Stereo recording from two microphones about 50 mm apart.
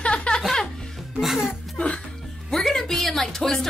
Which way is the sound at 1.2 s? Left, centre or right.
Centre.